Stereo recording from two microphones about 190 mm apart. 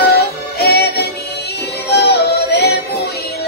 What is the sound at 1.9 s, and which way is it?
Yodeling, 60° left (ahead or behind).